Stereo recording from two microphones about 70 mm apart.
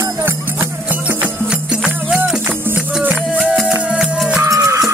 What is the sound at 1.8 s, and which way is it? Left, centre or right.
Music, centre.